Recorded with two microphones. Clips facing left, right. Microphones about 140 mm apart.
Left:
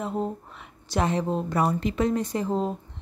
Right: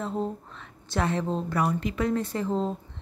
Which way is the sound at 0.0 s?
15° left (ahead or behind).